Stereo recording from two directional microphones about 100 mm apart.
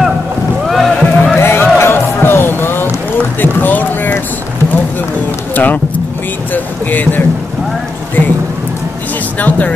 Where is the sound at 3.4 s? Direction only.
20° left (ahead or behind).